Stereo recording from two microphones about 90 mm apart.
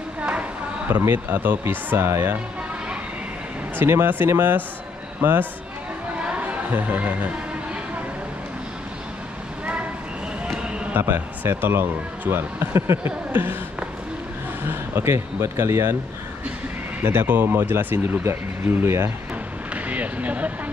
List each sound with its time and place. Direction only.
0.2 s clip-clop: 15° right (ahead or behind)
0.8 s speech: 25° right (ahead or behind)
3.7 s speech: 25° right (ahead or behind)
6.2 s a sound: 15° right (ahead or behind)
10.4 s basketball bounce: 10° right (ahead or behind)
11.0 s speech: 25° right (ahead or behind)
15.0 s speech: 30° right (ahead or behind)
17.0 s speech: 25° right (ahead or behind)
19.7 s a sound: 15° right (ahead or behind)